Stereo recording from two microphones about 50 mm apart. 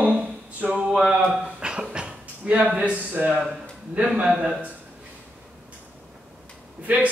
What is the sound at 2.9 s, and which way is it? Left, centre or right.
A man's voice, right.